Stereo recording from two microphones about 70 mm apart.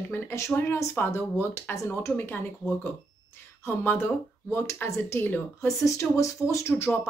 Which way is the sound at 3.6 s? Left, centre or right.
Left.